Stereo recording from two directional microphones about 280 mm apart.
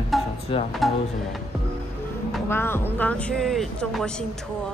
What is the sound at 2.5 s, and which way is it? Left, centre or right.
Speech, centre.